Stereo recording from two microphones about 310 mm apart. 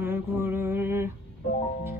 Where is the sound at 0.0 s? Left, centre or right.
Centre.